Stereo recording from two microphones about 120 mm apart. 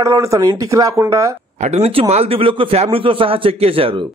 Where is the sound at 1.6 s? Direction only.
65° right (ahead or behind).